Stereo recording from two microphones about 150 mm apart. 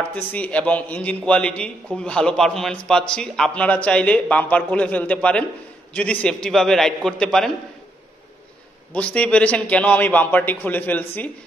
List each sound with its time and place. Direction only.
0.1 s a man's voice: 10° left (ahead or behind)
8.9 s a man's voice: 10° left (ahead or behind)